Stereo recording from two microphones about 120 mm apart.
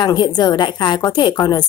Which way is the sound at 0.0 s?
35° left (ahead or behind).